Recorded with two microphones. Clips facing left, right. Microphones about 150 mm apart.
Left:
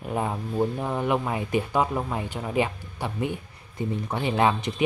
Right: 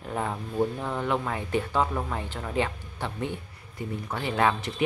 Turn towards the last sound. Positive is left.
turn(degrees=20)  # may be behind; listen again after turning